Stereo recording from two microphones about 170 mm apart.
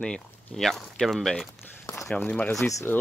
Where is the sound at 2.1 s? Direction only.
5° left (ahead or behind).